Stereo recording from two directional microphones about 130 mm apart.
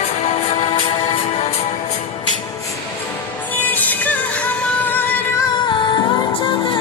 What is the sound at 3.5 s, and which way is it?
Music, 15° left (ahead or behind).